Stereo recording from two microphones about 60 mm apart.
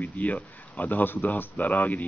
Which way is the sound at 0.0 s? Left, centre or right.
Left.